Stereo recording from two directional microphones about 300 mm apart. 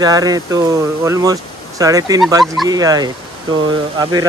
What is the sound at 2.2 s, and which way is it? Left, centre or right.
Speech, centre.